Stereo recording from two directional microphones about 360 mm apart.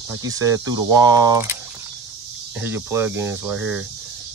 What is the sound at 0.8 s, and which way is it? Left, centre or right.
Speech, right.